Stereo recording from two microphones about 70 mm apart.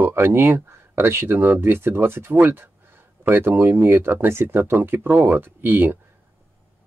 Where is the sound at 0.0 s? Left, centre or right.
Right.